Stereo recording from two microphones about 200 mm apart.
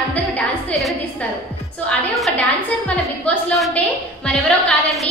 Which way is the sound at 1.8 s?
5° left (ahead or behind).